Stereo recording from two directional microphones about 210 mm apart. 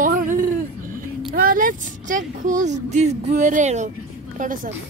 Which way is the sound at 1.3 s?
40° right (ahead or behind).